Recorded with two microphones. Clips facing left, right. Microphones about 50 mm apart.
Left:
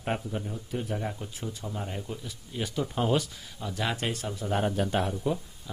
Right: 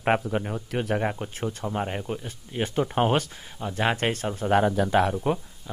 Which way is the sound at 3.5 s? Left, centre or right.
Right.